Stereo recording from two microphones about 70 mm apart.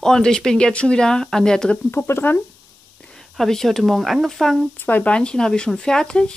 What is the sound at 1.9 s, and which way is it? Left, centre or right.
Speech, left.